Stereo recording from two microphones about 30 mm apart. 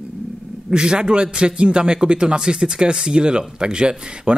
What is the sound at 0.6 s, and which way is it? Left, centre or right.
Speech, right.